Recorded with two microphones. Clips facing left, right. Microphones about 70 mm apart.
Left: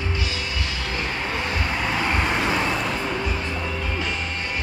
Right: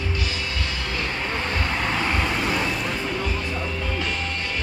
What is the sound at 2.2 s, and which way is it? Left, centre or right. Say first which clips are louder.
Vehicle: left 2 dB; centre.